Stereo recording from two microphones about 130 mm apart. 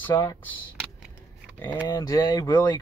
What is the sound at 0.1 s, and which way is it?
Speech, 30° left (ahead or behind).